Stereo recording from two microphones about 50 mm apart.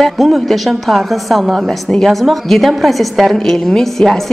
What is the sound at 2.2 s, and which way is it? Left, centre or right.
A woman's voice, centre.